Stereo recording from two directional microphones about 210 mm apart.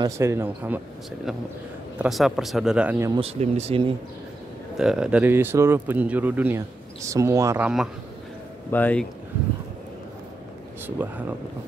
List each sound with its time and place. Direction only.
0.0 s speech: 15° right (ahead or behind)
2.0 s speech: centre (ahead or behind)
3.2 s speech: 30° right (ahead or behind)
4.7 s speech: 5° right (ahead or behind)
8.7 s speech: 10° left (ahead or behind)
11.0 s speech: 10° right (ahead or behind)